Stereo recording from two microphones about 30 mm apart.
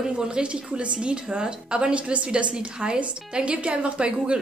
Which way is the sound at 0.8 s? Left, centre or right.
Right.